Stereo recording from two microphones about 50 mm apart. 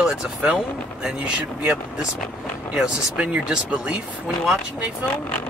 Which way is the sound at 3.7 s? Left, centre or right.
Right.